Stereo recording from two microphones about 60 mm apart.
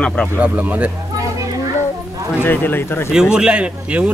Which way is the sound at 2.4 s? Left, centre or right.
Left.